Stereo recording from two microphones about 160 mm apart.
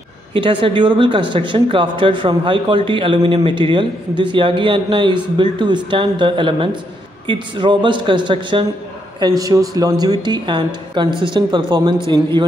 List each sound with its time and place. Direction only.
0.3 s speech: 30° right (ahead or behind)